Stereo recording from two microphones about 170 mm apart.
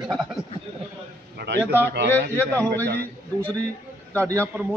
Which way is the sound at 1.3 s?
90° right.